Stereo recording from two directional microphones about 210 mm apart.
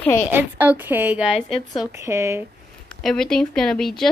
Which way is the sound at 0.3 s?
10° right (ahead or behind).